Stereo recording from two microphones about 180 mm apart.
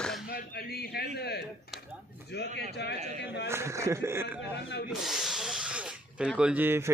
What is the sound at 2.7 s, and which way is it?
Speech, 70° left (ahead or behind).